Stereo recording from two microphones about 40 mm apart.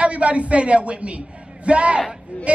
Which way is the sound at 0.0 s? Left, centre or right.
Right.